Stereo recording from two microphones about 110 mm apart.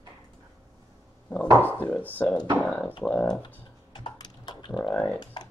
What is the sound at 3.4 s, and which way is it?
Typing, 40° left (ahead or behind).